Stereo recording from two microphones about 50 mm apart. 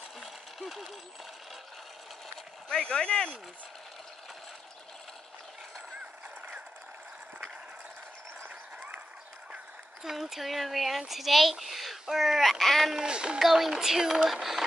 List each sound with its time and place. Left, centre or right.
0.2 s a sound: centre
2.7 s speech: centre
8.7 s run: right
10.0 s a child's voice: centre
12.9 s speech: centre
13.4 s speech: centre